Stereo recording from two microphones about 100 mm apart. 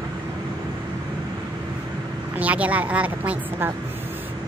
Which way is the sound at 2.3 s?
15° right (ahead or behind).